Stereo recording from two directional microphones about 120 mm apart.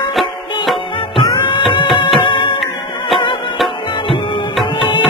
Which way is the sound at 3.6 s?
Centre (ahead or behind).